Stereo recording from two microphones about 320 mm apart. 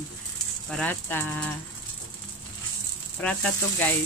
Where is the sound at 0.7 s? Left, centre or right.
Centre.